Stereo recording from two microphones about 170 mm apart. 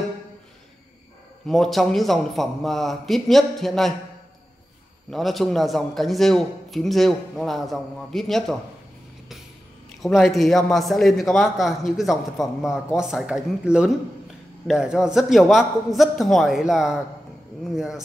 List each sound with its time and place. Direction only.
1.5 s a man's voice: centre (ahead or behind)
5.1 s a man's voice: centre (ahead or behind)
10.0 s a man's voice: centre (ahead or behind)